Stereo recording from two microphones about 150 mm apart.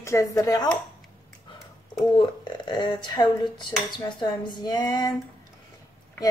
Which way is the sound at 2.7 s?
30° left (ahead or behind).